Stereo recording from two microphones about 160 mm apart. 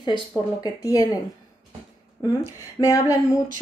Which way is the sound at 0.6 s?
25° left (ahead or behind).